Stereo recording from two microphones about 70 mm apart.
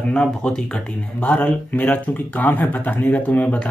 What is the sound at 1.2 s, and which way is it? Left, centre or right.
Speech, left.